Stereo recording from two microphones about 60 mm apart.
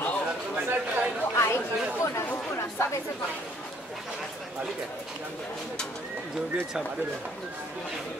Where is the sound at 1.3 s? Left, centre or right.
Left.